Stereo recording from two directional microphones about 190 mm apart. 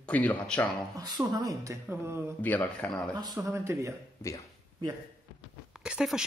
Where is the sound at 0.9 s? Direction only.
20° right (ahead or behind).